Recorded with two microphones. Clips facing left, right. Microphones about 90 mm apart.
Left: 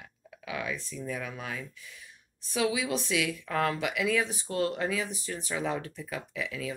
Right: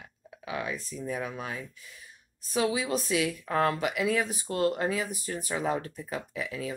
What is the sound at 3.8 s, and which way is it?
Speech, 40° right (ahead or behind).